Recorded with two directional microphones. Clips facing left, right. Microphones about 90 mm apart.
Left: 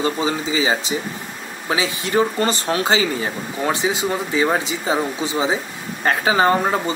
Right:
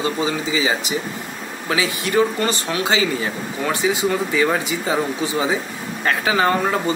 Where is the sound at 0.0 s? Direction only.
30° left (ahead or behind).